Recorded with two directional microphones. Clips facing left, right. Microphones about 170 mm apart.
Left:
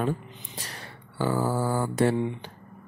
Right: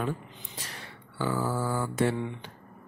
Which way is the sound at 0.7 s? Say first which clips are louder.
Left 2 dB; 40° left (ahead or behind).